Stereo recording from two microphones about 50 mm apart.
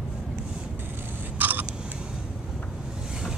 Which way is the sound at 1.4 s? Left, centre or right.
Right.